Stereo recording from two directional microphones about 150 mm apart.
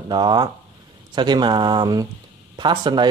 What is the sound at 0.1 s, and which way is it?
Speech, 30° right (ahead or behind).